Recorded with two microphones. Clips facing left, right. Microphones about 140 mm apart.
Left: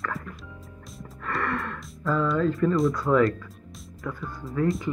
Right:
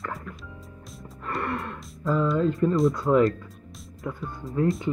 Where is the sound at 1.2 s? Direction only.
25° right (ahead or behind).